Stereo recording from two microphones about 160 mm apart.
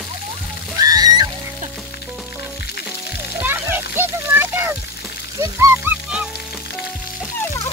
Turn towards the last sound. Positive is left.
turn(degrees=-10)  # may be behind; listen again after turning